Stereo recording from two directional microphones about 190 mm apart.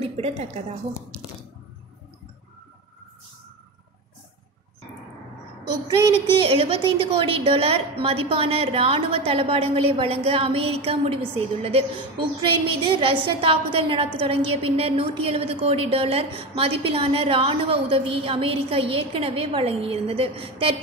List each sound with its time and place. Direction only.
6.4 s a woman's voice: 30° right (ahead or behind)